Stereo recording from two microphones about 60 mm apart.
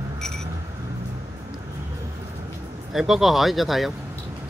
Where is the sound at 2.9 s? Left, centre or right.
Centre.